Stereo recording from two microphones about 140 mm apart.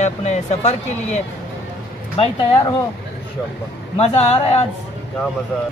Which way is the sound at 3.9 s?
45° left (ahead or behind).